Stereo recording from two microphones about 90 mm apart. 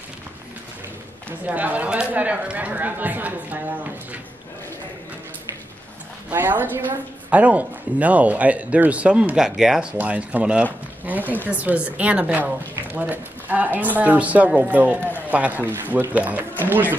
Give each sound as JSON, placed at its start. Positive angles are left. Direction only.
{"t": 1.4, "sound": "speech", "side_deg": -20}
{"t": 6.3, "sound": "a woman's voice", "side_deg": -20}